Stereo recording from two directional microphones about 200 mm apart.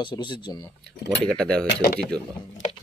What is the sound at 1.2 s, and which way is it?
Speech, 5° left (ahead or behind).